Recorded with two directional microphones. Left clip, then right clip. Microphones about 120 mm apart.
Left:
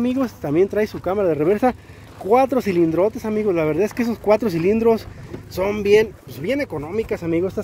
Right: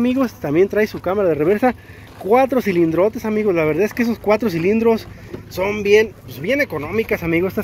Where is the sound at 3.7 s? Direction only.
30° left (ahead or behind).